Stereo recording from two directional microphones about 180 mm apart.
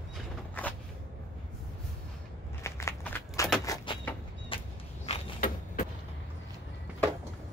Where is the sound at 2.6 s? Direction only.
15° left (ahead or behind).